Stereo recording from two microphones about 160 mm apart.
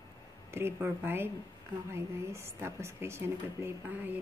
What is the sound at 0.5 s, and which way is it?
Speech, 15° right (ahead or behind).